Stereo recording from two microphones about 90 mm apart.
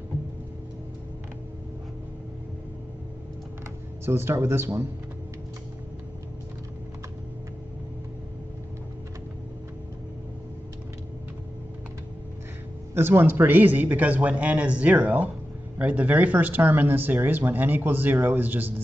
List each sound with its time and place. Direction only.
4.0 s speech: 30° right (ahead or behind)
12.9 s speech: 25° right (ahead or behind)